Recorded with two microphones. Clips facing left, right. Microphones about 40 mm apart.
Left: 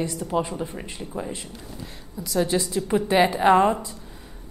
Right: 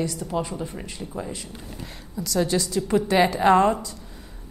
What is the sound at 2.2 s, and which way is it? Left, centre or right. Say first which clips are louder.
A woman's voice: even; centre.